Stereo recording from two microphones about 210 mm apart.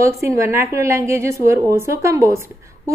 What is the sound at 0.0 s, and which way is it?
A woman's voice, 15° right (ahead or behind).